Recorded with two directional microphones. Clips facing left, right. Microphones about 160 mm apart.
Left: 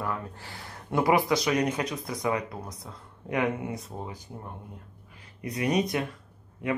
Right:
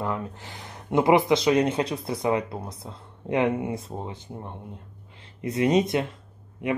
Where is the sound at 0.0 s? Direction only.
20° right (ahead or behind).